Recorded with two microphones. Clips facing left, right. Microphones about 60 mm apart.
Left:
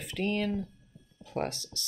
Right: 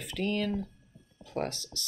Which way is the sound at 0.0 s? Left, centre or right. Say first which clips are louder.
Even; left.